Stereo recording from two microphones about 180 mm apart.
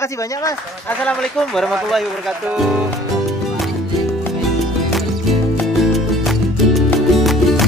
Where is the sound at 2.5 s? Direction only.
5° right (ahead or behind).